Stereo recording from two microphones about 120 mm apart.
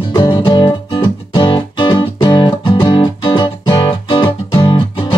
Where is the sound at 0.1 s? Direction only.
40° left (ahead or behind).